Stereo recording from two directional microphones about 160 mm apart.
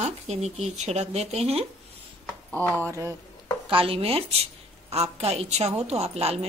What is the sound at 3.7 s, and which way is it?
A woman's voice, 35° right (ahead or behind).